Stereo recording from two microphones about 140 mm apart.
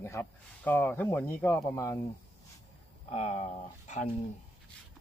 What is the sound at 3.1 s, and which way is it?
Speech, 50° left (ahead or behind).